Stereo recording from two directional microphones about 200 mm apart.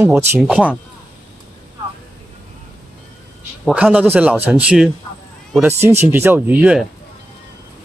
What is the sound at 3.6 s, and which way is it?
A man's voice, 10° right (ahead or behind).